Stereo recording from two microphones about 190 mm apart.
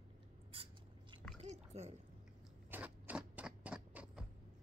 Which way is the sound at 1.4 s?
35° right (ahead or behind).